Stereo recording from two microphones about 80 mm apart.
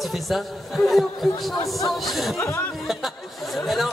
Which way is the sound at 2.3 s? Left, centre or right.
Left.